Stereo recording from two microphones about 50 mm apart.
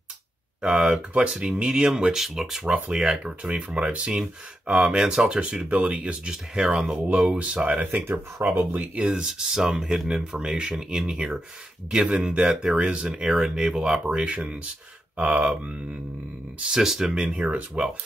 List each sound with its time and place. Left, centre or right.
0.6 s speech: centre
2.6 s speech: right
7.1 s speech: right
8.0 s speech: right
8.9 s speech: centre
12.0 s speech: right
12.7 s speech: right
13.0 s speech: centre
14.0 s speech: right
16.6 s speech: centre
17.2 s speech: right